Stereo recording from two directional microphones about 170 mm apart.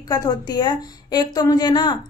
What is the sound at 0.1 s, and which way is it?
A woman's voice, 25° left (ahead or behind).